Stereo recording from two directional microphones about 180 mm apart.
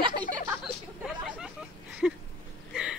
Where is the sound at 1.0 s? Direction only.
5° right (ahead or behind).